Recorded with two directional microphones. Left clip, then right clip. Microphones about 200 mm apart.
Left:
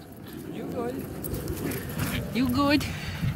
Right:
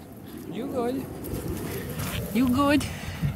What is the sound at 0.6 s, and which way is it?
Bird, 20° right (ahead or behind).